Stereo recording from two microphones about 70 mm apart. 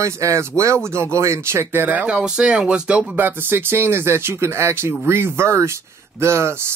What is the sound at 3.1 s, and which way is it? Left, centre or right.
Speech, right.